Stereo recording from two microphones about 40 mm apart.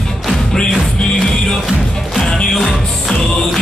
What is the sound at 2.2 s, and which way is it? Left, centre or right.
Music, centre.